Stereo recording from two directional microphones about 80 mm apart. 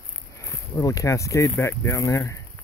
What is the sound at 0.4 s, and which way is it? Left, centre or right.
Speech, left.